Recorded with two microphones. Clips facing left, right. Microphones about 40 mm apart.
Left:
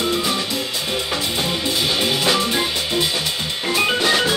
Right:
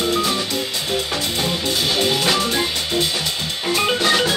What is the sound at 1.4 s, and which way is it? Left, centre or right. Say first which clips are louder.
Music: right 1 dB; centre.